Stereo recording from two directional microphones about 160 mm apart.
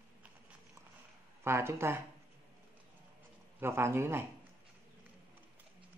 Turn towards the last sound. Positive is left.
turn(degrees=-15)  # may be behind; listen again after turning